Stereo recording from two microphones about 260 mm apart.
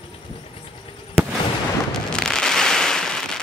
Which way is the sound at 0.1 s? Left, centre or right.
Left.